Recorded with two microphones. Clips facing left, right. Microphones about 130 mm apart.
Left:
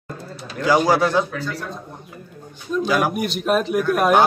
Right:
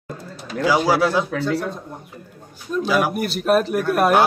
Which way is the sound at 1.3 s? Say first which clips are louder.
Right 6 dB; 65° right (ahead or behind).